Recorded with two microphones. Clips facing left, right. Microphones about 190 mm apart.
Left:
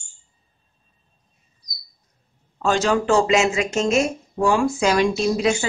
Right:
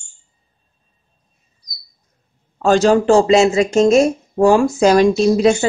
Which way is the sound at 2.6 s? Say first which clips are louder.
Right 7 dB; 40° right (ahead or behind).